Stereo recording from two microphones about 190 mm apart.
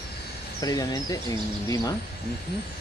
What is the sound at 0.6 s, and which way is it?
Speech, 20° left (ahead or behind).